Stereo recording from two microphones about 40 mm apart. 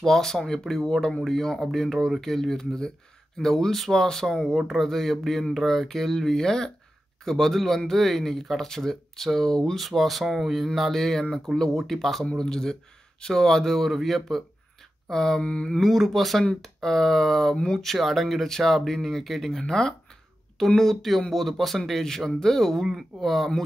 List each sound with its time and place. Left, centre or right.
0.0 s a man's voice: centre
9.8 s a man's voice: centre
15.4 s a sound: left
15.8 s a man's voice: centre
19.6 s a man's voice: centre
20.5 s a man's voice: centre